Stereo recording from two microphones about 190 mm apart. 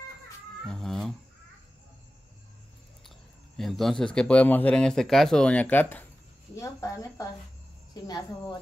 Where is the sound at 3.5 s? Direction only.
Centre (ahead or behind); by 8.5 s 20° left (ahead or behind).